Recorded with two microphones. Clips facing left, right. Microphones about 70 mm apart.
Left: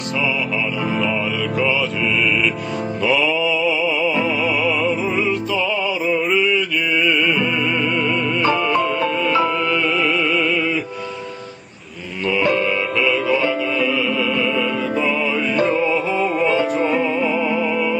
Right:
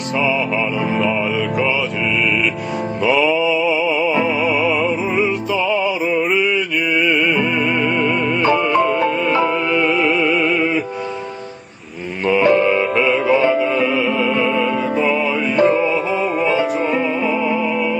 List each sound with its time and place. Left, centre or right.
3.3 s mantra: right
4.1 s music: right
8.0 s music: right
12.3 s music: right
15.5 s music: right
16.4 s music: centre
17.3 s music: right